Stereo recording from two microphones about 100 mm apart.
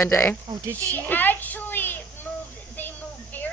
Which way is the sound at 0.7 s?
20° left (ahead or behind).